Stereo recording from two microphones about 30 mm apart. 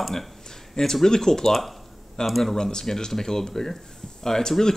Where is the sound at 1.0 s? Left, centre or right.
Centre.